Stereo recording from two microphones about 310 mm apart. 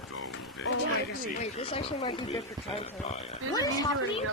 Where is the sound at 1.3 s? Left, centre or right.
Centre.